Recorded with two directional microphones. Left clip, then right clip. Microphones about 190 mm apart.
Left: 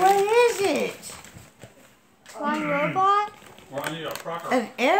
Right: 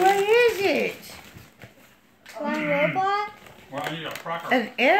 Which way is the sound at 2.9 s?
20° left (ahead or behind).